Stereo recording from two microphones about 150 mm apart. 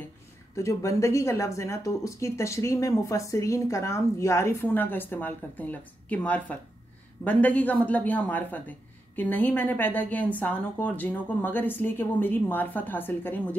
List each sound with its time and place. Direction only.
0.6 s speech: 20° left (ahead or behind)